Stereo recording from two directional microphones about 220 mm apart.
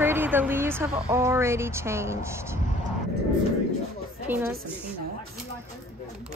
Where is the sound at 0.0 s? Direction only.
10° right (ahead or behind).